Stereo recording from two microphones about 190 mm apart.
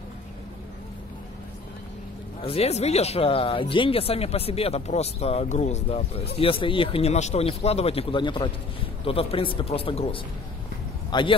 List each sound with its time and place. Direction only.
2.4 s a man's voice: 30° left (ahead or behind)